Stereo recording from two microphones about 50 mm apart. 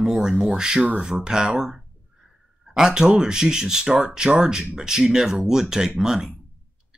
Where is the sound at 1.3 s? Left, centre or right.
Centre.